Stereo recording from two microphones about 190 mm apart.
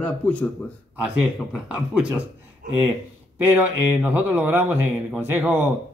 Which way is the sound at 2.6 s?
50° right (ahead or behind).